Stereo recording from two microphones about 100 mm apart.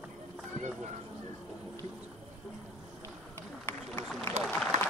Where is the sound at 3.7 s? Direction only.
20° left (ahead or behind).